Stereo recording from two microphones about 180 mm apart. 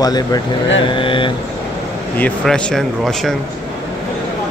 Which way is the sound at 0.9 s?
30° left (ahead or behind).